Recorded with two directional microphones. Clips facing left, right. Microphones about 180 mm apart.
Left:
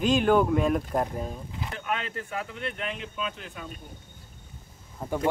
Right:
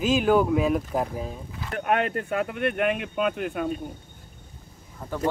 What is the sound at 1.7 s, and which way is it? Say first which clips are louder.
Speech: right 9 dB; 60° right (ahead or behind).